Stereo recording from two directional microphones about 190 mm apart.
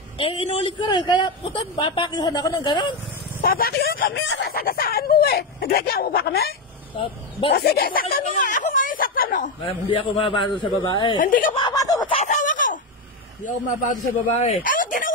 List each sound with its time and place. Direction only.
0.2 s a man's voice: 30° left (ahead or behind)
3.3 s speech: 50° left (ahead or behind)
4.1 s chicken: 85° left
4.5 s speech: 50° left (ahead or behind)
7.0 s speech: 25° left (ahead or behind)
7.5 s speech: 55° left (ahead or behind)
9.6 s a man's voice: 25° left (ahead or behind)
11.1 s speech: 45° left (ahead or behind)
11.5 s speech: 20° left (ahead or behind)
12.2 s a sound: 40° left (ahead or behind)
13.8 s speech: 35° left (ahead or behind)